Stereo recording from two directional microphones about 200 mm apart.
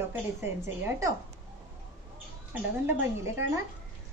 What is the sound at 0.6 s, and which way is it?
Speech, 15° right (ahead or behind).